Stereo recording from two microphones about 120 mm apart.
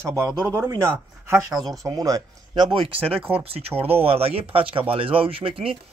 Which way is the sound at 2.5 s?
45° right (ahead or behind).